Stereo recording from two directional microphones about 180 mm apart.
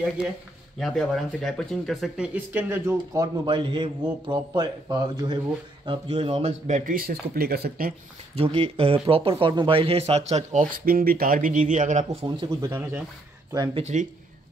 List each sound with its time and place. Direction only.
0.7 s speech: centre (ahead or behind)
3.4 s a man's voice: 30° right (ahead or behind); by 7.9 s 55° right (ahead or behind)
8.4 s speech: 35° right (ahead or behind)
12.3 s speech: 20° right (ahead or behind)
13.7 s speech: 40° right (ahead or behind)